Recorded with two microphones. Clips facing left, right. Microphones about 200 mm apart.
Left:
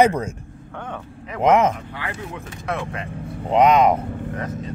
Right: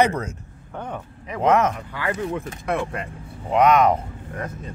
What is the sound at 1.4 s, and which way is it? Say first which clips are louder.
Speech: left 2 dB; 15° left (ahead or behind).